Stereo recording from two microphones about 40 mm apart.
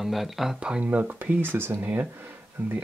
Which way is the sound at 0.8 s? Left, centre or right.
Right.